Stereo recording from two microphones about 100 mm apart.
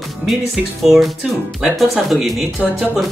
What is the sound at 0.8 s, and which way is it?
Speech, centre (ahead or behind).